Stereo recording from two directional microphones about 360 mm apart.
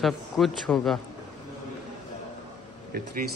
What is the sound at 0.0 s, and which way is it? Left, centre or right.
Speech, centre.